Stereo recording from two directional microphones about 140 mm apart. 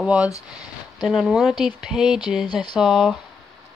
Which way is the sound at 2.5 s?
35° left (ahead or behind).